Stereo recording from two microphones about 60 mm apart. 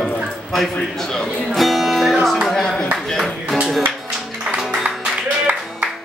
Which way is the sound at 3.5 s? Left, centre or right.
Centre.